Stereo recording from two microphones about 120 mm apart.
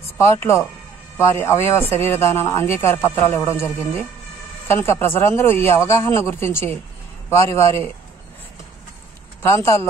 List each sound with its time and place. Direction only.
0.2 s speech: 25° left (ahead or behind)
9.4 s speech: 20° left (ahead or behind)